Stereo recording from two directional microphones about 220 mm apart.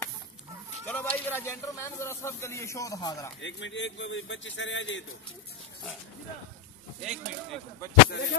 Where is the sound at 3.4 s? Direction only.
55° left (ahead or behind).